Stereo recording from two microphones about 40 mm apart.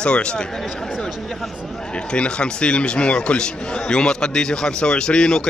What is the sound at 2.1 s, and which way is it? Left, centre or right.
A man's voice, left.